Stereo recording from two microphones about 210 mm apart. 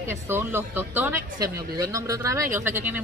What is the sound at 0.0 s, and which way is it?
Speech, 10° right (ahead or behind).